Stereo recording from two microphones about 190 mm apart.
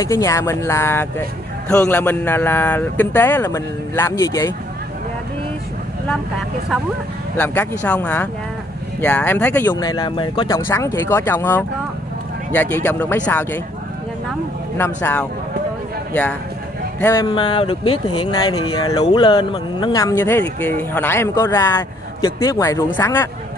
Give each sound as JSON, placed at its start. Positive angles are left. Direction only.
{"t": 0.0, "sound": "a man's voice", "side_deg": 15}
{"t": 7.3, "sound": "a man's voice", "side_deg": 10}
{"t": 14.8, "sound": "a man's voice", "side_deg": 10}
{"t": 17.3, "sound": "a man's voice", "side_deg": 25}